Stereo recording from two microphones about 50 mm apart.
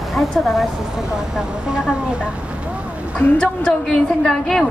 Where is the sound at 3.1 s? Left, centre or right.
Left.